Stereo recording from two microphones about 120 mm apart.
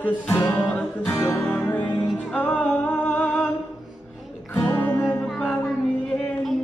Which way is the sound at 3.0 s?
10° left (ahead or behind).